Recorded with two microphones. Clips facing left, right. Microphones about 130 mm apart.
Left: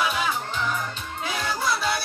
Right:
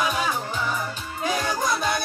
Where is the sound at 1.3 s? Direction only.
15° right (ahead or behind).